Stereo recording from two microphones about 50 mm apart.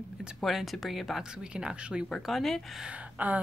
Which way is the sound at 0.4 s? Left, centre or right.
Centre.